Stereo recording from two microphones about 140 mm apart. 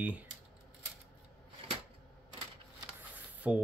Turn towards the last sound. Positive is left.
turn(degrees=-10)  # may be behind; listen again after turning